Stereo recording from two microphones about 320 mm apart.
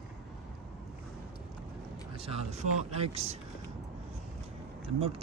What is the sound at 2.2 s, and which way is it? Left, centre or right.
Speech, centre.